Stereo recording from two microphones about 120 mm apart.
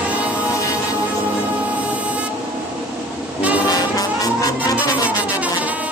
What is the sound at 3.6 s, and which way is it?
Music, 30° left (ahead or behind).